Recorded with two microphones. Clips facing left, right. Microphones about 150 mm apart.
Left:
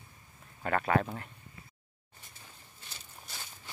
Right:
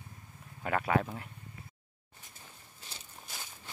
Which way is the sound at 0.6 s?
10° right (ahead or behind).